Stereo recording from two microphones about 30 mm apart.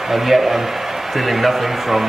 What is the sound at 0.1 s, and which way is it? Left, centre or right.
A man's voice, centre.